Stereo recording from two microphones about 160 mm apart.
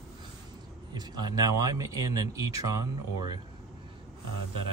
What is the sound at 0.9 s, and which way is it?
Speech, 25° right (ahead or behind).